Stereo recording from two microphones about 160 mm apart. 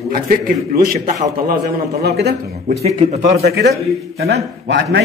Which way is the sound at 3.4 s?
90° right.